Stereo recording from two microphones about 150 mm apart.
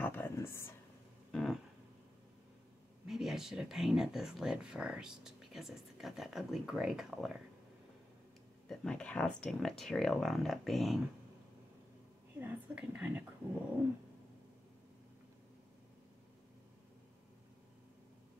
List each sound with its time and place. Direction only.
0.0 s a sound: 15° left (ahead or behind)
1.3 s music: 5° left (ahead or behind)
3.1 s speech: 5° right (ahead or behind)
8.6 s speech: 5° left (ahead or behind)
12.4 s a woman's voice: 10° right (ahead or behind)